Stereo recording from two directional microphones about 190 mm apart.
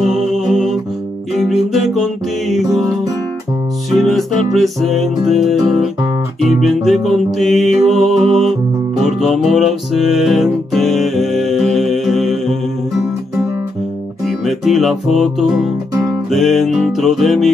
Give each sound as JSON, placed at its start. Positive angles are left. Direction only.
{"t": 0.0, "sound": "music", "side_deg": 0}
{"t": 3.9, "sound": "music", "side_deg": 0}
{"t": 14.2, "sound": "music", "side_deg": 0}